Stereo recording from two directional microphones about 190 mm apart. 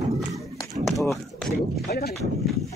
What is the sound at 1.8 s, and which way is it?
Speech, 55° left (ahead or behind).